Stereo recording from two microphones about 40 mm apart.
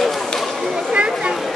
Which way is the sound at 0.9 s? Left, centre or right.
Right.